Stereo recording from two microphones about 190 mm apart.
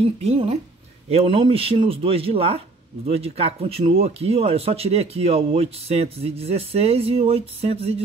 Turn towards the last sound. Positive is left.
turn(degrees=-30)  # may be behind; listen again after turning